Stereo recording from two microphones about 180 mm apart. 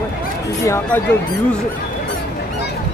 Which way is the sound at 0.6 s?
15° left (ahead or behind).